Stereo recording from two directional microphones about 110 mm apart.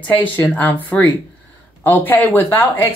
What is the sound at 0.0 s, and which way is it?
Speech, 15° left (ahead or behind).